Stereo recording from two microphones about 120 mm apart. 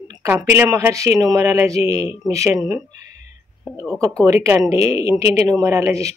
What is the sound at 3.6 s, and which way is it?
Speech, 20° right (ahead or behind).